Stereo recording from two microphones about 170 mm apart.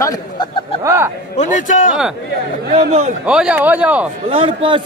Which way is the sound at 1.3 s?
45° left (ahead or behind).